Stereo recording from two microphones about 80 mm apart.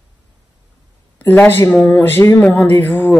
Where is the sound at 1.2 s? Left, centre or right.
Left.